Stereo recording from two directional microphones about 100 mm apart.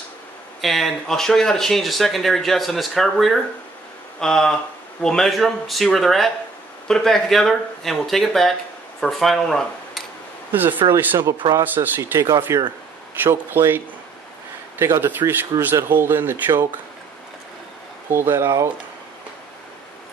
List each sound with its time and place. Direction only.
0.6 s speech: centre (ahead or behind)
10.5 s speech: 20° right (ahead or behind)
12.0 s speech: 30° right (ahead or behind)
15.0 s speech: 20° right (ahead or behind)
18.1 s speech: 25° right (ahead or behind)